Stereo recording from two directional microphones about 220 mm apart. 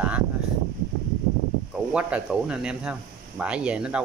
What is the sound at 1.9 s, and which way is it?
Speech, 5° right (ahead or behind).